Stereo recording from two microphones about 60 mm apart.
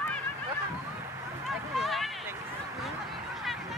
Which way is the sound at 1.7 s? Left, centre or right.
Centre.